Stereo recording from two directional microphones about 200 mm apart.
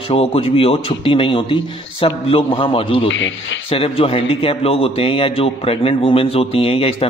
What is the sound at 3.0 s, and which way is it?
Speech, 70° left (ahead or behind).